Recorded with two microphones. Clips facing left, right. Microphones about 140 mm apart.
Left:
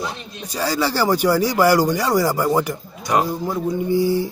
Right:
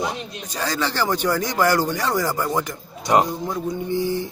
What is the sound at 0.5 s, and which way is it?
Speech, 10° left (ahead or behind).